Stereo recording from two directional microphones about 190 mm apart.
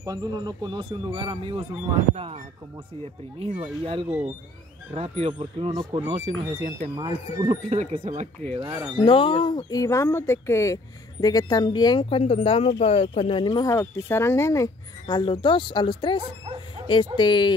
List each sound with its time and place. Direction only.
0.0 s speech: 20° right (ahead or behind)
5.7 s speech: 20° right (ahead or behind)
7.7 s speech: 35° right (ahead or behind)
8.5 s speech: 15° right (ahead or behind)
8.9 s speech: 30° left (ahead or behind)